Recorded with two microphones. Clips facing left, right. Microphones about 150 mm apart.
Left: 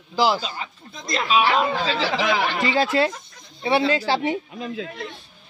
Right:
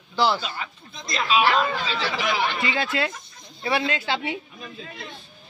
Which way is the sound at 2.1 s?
90° left.